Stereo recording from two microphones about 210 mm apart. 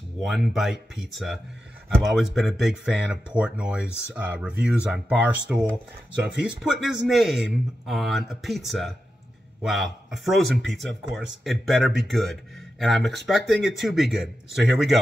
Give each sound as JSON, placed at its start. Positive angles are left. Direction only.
{"t": 0.2, "sound": "speech", "side_deg": 0}